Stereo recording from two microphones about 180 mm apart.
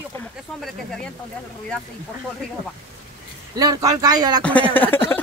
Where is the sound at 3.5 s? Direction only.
20° right (ahead or behind).